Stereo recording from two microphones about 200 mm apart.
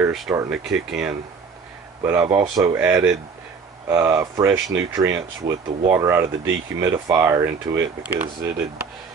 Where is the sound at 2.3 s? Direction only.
25° right (ahead or behind).